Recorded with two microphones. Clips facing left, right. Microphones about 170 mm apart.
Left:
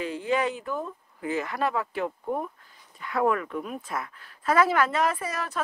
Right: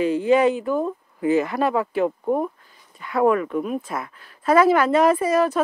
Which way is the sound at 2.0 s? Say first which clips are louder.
Right 8 dB; 35° right (ahead or behind).